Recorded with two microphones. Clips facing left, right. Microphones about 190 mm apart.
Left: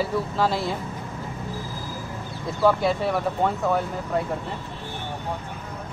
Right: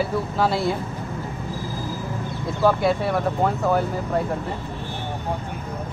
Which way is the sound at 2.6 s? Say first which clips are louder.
Right 1 dB; centre (ahead or behind).